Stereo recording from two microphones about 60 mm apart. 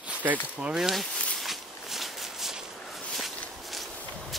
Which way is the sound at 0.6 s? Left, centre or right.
Centre.